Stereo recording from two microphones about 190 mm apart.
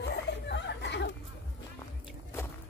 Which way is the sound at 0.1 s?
65° left (ahead or behind).